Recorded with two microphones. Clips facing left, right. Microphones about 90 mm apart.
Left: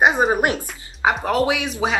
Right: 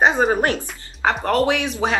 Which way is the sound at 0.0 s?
15° left (ahead or behind).